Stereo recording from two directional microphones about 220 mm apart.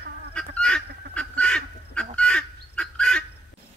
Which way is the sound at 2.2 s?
5° left (ahead or behind).